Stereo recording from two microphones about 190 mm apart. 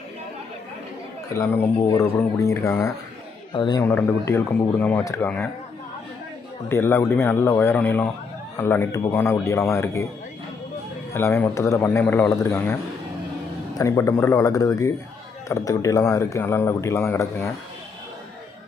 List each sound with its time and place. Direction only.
1.3 s speech: 15° left (ahead or behind)
6.7 s speech: 15° left (ahead or behind)
11.1 s speech: 10° left (ahead or behind)
13.7 s speech: 15° left (ahead or behind)